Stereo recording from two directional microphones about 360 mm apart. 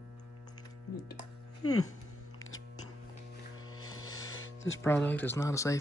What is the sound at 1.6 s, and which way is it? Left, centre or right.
Speech, left.